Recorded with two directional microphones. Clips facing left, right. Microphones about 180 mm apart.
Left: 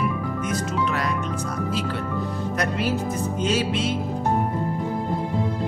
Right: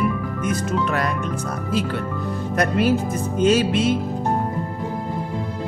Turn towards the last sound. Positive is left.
turn(degrees=-50)  # may be behind; listen again after turning